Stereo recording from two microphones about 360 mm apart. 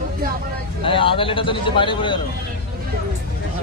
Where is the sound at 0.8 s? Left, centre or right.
Centre.